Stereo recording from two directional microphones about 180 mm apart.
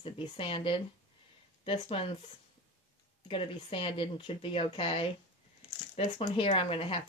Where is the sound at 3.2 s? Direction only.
30° left (ahead or behind).